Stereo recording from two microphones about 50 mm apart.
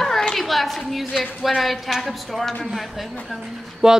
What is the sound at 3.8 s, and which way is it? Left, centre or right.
Speech, centre.